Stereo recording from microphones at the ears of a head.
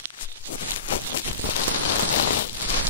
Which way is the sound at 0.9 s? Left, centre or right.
Left.